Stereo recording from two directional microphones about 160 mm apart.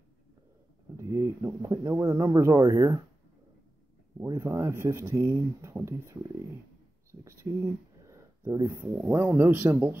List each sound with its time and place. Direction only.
0.9 s speech: 20° right (ahead or behind)
4.3 s speech: 15° right (ahead or behind)